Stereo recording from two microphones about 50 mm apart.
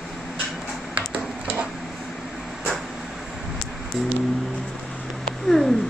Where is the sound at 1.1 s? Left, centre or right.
Right.